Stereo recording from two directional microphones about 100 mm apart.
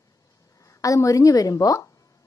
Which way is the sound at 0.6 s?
35° left (ahead or behind).